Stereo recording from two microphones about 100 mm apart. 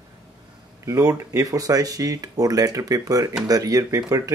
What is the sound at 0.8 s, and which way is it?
Speech, 35° right (ahead or behind).